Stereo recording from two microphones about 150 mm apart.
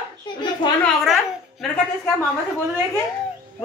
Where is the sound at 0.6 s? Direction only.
30° left (ahead or behind).